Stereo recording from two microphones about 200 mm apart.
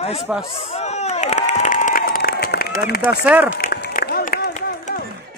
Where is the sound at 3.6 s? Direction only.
50° left (ahead or behind).